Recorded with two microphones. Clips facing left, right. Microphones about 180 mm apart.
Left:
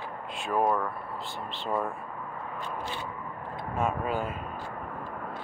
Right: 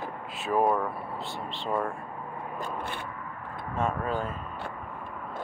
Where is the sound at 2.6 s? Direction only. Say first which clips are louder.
Right 1 dB; 55° right (ahead or behind).